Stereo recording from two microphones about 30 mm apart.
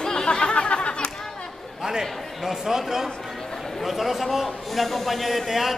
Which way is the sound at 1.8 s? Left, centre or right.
Centre.